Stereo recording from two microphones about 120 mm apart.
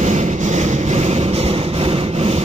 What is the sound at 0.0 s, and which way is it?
Vehicle, 75° right (ahead or behind).